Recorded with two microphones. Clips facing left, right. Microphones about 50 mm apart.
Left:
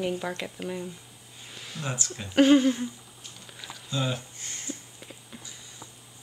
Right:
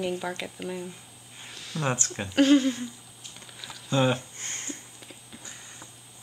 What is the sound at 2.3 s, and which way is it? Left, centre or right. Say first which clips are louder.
Speech: left 1 dB; centre.